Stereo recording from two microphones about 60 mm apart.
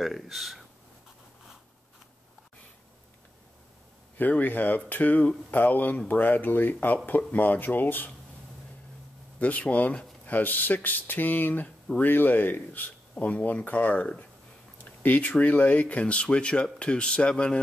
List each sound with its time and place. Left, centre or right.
0.0 s speech: centre
4.2 s speech: left
9.4 s speech: left